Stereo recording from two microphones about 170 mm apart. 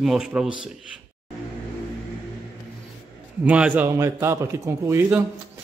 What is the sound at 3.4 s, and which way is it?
A man's voice, 10° right (ahead or behind).